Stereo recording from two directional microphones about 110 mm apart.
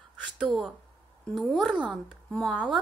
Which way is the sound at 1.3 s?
Centre (ahead or behind).